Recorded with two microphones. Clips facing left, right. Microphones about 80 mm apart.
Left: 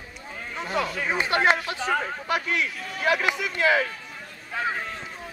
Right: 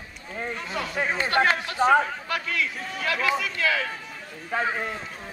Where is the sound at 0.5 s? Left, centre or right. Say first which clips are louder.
Left 4 dB; left.